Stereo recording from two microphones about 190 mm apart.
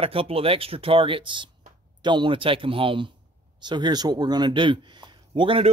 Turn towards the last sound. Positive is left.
turn(degrees=-30)  # may be behind; listen again after turning